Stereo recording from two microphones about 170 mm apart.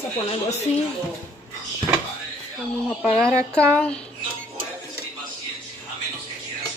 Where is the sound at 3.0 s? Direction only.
15° right (ahead or behind).